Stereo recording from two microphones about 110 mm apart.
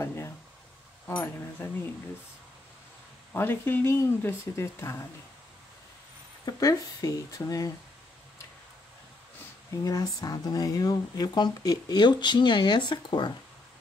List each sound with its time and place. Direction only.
0.0 s a sound: 25° left (ahead or behind)
1.0 s speech: 20° left (ahead or behind)
3.3 s speech: 20° left (ahead or behind)
6.4 s speech: 35° left (ahead or behind)
9.8 s speech: 35° left (ahead or behind)